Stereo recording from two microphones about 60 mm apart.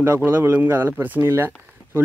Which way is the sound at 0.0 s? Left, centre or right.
Right.